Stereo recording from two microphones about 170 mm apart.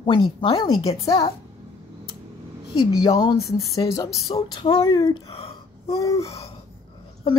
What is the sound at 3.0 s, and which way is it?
A woman's voice, 25° left (ahead or behind).